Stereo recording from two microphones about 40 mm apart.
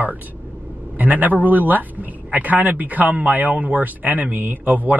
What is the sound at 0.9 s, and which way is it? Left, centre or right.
A man's voice, right.